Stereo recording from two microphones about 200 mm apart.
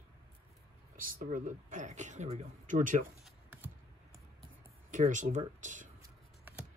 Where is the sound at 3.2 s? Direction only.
10° right (ahead or behind).